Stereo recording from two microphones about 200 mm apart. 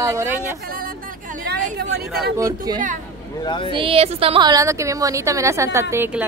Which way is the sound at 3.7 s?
25° right (ahead or behind).